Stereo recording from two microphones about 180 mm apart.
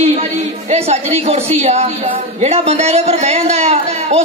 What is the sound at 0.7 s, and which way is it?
A man's voice, 35° right (ahead or behind).